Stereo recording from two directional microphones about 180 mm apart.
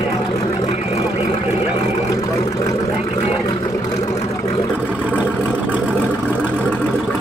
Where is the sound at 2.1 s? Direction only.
20° left (ahead or behind).